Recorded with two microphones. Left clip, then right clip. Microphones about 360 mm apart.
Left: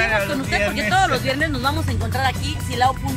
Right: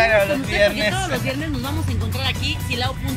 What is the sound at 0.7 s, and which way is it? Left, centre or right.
Speech, left.